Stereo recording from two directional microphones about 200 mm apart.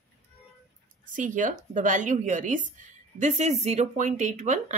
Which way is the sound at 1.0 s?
40° right (ahead or behind).